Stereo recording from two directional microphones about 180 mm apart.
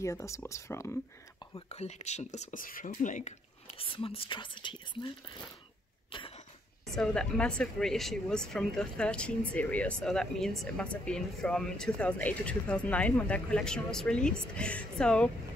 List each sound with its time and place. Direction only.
0.0 s speech: 15° left (ahead or behind)
1.7 s speech: 35° left (ahead or behind)
6.9 s speech: 5° left (ahead or behind)